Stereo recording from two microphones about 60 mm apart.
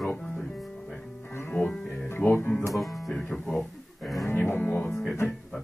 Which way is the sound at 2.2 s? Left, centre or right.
Left.